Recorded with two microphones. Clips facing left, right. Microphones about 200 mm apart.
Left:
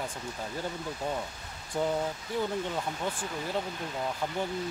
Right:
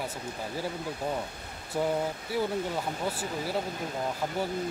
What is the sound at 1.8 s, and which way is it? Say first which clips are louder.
Speech: right 1 dB; 5° right (ahead or behind).